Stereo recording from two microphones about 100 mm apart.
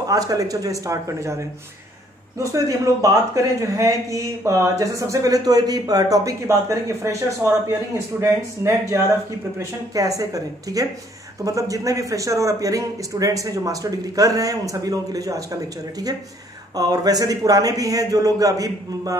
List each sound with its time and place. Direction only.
0.0 s a man's voice: 35° right (ahead or behind)